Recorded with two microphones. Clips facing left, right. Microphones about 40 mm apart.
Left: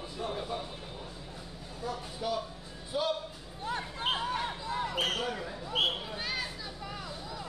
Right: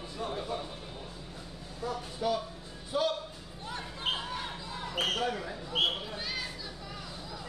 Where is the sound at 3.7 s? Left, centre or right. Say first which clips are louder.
Left 2 dB; left.